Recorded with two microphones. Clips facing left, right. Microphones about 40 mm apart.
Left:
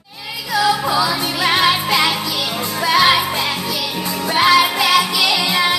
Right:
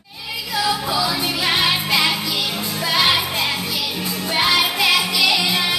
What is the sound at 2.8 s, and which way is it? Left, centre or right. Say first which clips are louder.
Music: left 5 dB; left.